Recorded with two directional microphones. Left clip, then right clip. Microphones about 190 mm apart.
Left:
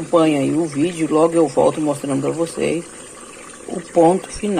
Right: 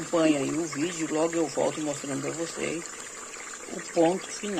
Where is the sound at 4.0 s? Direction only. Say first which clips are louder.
Left 10 dB; 15° left (ahead or behind).